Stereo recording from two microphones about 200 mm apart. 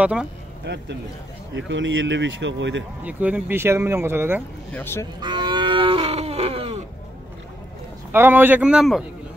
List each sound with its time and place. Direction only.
0.0 s speech: 5° right (ahead or behind)
0.7 s speech: 60° right (ahead or behind)
3.0 s speech: 5° right (ahead or behind)
5.2 s livestock: 25° right (ahead or behind)
8.1 s speech: 10° right (ahead or behind)